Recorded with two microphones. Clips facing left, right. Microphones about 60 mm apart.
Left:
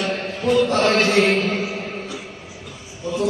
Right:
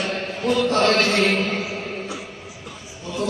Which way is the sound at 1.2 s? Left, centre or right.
Centre.